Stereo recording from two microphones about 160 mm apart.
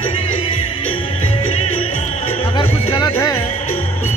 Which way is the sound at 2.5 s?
25° left (ahead or behind).